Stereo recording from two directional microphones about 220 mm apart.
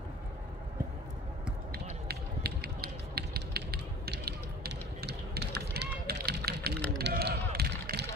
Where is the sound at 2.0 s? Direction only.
45° right (ahead or behind).